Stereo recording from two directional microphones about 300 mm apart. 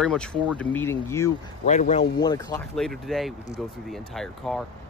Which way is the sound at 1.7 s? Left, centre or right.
Left.